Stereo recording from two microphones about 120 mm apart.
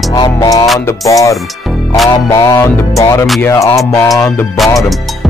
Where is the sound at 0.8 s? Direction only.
25° left (ahead or behind).